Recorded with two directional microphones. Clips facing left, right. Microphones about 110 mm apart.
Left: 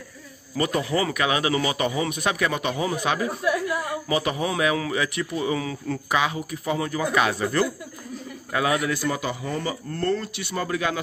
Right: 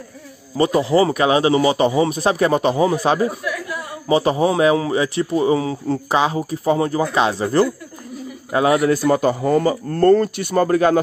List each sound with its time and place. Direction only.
0.6 s a man's voice: 30° right (ahead or behind)
3.4 s a sound: 25° left (ahead or behind)
4.1 s a man's voice: 30° right (ahead or behind)